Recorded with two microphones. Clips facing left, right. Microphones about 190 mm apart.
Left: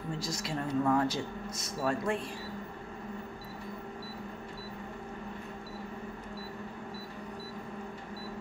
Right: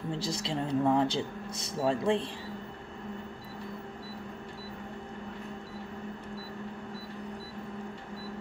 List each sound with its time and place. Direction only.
0.1 s speech: 30° right (ahead or behind)